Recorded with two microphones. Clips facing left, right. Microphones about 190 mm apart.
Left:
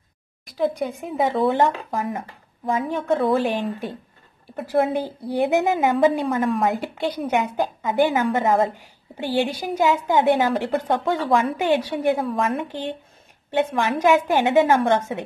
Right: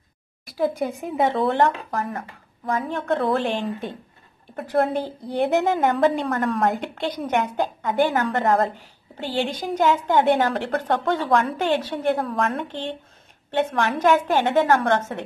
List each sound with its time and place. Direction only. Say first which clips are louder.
0.5 s speech: even; centre (ahead or behind)
1.6 s a woman's voice: even; 15° left (ahead or behind)
3.1 s a woman's voice: left 2 dB; centre (ahead or behind)